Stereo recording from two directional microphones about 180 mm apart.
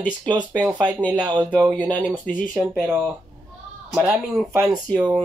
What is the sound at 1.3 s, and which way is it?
Speech, 25° right (ahead or behind).